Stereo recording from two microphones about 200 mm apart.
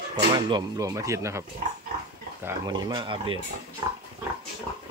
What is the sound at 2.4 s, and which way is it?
Speech, 20° right (ahead or behind).